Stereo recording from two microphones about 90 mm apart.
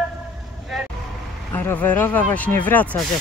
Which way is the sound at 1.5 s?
20° left (ahead or behind).